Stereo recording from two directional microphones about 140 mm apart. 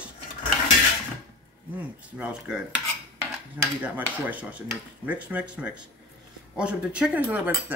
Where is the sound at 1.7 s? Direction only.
10° right (ahead or behind).